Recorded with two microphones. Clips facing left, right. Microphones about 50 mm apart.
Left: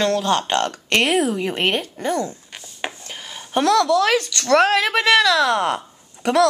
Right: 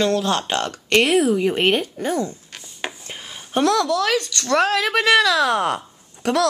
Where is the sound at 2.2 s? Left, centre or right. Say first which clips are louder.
Even; centre.